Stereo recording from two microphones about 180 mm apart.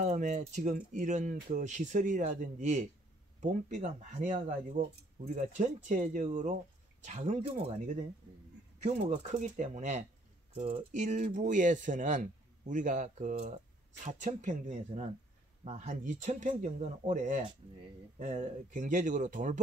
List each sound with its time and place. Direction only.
0.0 s speech: 45° right (ahead or behind)